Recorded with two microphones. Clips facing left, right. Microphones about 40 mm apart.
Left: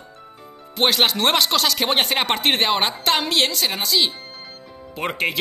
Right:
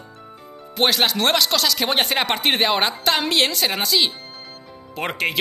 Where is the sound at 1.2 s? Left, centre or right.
Centre.